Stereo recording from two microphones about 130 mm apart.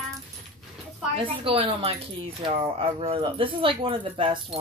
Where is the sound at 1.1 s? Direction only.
45° right (ahead or behind).